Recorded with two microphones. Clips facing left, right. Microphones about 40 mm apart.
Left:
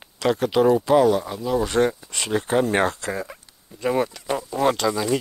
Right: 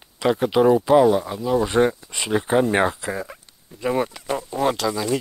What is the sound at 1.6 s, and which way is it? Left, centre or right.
Speech, centre.